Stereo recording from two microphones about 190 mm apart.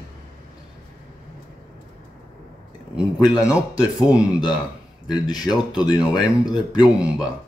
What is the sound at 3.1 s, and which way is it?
Speech, 20° left (ahead or behind).